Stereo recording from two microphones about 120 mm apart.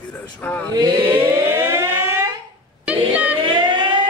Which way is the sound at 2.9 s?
10° right (ahead or behind).